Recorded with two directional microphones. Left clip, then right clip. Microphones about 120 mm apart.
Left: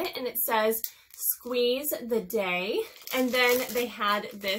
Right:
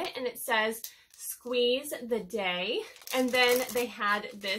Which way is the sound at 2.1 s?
20° left (ahead or behind).